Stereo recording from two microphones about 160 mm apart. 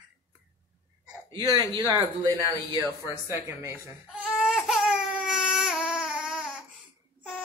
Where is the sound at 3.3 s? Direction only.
15° right (ahead or behind).